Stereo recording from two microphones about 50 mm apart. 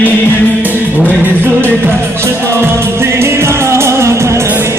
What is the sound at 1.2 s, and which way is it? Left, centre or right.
Music, right.